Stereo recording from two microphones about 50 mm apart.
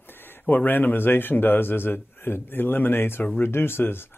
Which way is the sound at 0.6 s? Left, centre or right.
Left.